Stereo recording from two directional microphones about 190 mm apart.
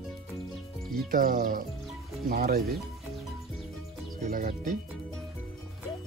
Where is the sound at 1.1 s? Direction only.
50° right (ahead or behind).